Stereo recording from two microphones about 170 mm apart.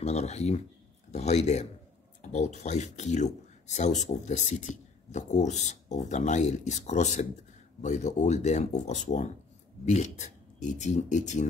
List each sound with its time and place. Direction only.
0.0 s speech: 40° left (ahead or behind)